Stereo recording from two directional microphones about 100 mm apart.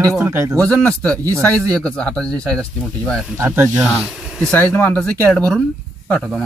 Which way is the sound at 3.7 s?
5° right (ahead or behind).